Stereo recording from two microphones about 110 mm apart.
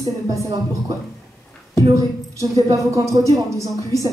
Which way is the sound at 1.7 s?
30° right (ahead or behind).